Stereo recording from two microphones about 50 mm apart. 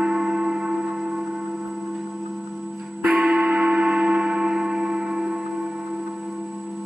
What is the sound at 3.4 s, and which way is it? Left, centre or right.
Music, centre.